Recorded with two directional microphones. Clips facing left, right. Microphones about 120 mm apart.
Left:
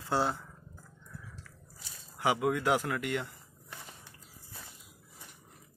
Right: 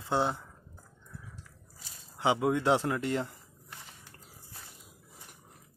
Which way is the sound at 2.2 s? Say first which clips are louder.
Right 2 dB; 25° right (ahead or behind).